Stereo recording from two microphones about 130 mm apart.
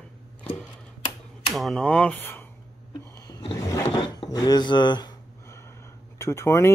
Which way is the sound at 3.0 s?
25° left (ahead or behind).